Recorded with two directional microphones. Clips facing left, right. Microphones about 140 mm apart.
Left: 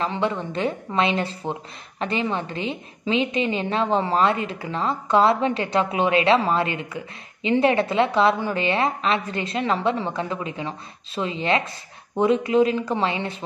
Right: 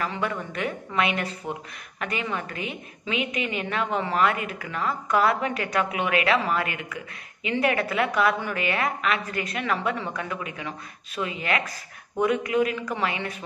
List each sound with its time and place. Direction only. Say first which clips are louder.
0.0 s speech: left 4 dB; 25° left (ahead or behind)